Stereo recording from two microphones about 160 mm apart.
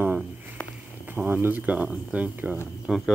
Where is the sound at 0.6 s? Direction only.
10° left (ahead or behind).